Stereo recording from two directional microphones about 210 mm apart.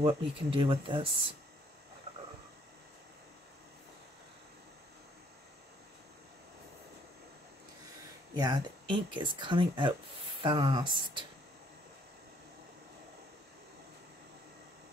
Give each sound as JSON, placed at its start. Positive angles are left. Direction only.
{"t": 0.0, "sound": "speech", "side_deg": -25}
{"t": 2.1, "sound": "cricket", "side_deg": -30}
{"t": 8.4, "sound": "speech", "side_deg": -20}